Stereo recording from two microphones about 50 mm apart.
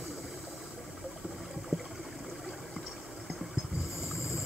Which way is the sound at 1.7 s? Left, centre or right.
Centre.